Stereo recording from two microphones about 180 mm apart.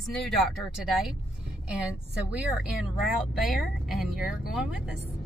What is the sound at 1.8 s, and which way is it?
A woman's voice, 5° right (ahead or behind).